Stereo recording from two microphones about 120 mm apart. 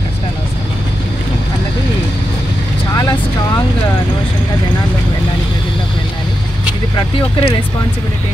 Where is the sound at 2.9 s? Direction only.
30° left (ahead or behind).